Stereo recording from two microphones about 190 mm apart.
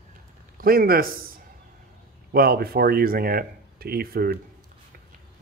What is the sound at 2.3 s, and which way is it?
Speech, 55° right (ahead or behind).